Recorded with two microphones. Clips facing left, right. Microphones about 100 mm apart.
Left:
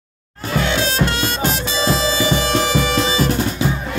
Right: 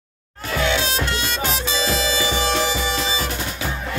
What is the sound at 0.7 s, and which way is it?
Music, 45° left (ahead or behind).